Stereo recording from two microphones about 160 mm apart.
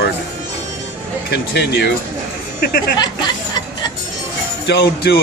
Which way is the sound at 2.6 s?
70° left (ahead or behind).